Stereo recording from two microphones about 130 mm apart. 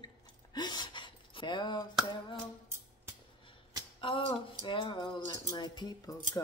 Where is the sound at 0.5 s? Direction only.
35° left (ahead or behind).